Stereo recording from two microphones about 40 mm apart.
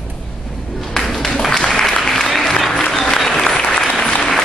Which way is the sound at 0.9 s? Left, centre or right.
Centre.